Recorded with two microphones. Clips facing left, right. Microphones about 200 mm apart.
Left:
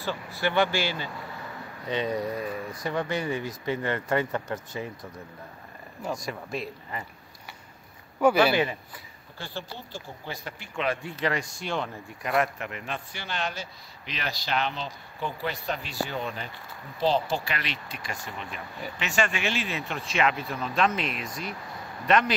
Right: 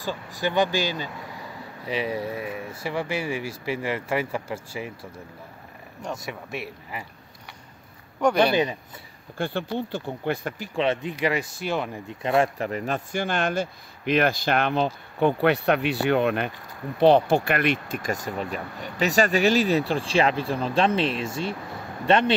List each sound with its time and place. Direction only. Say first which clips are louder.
0.0 s speech: right 1 dB; 15° right (ahead or behind)
8.2 s speech: even; 5° left (ahead or behind)
9.4 s speech: right 11 dB; 55° right (ahead or behind)
10.6 s speech: right 3 dB; 30° right (ahead or behind); by 12.0 s 10° right (ahead or behind)
12.1 s speech: right 5 dB; 25° right (ahead or behind)